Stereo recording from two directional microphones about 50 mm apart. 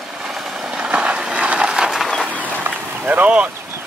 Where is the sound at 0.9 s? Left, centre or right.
Right.